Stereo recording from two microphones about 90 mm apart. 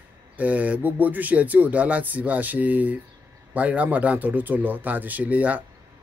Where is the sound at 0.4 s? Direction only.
15° right (ahead or behind).